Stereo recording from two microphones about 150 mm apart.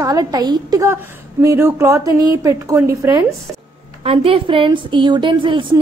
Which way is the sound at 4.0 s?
40° right (ahead or behind).